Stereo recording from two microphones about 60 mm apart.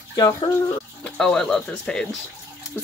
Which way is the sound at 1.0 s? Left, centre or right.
Centre.